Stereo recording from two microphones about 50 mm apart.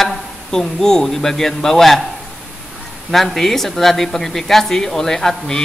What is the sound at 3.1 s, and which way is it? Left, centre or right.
Speech, centre.